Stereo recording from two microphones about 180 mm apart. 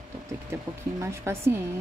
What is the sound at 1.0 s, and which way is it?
Speech, 15° right (ahead or behind).